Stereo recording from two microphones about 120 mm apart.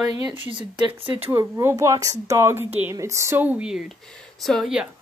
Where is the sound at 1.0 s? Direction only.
45° right (ahead or behind).